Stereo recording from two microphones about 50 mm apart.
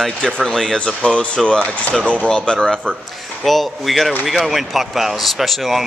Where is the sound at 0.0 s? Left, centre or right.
Centre.